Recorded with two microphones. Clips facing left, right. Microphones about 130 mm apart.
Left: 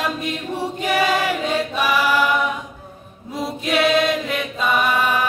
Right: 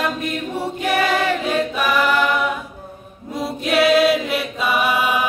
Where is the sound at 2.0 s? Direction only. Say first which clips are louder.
Right 1 dB; 10° left (ahead or behind).